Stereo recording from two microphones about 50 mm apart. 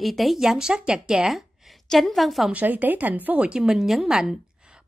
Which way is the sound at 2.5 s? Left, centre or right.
Right.